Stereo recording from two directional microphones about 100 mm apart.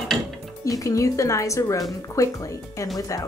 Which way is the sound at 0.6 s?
35° left (ahead or behind).